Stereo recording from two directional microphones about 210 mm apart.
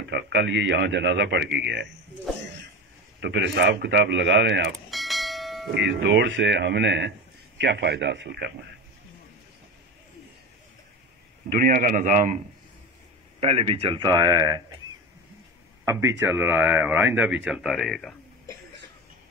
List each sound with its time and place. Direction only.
0.1 s a man's voice: 55° right (ahead or behind)
3.2 s a man's voice: 55° right (ahead or behind)
4.7 s bell: centre (ahead or behind)
5.7 s a man's voice: 55° right (ahead or behind)
11.4 s a man's voice: 45° right (ahead or behind)
13.4 s speech: 25° right (ahead or behind)
15.8 s speech: 15° right (ahead or behind)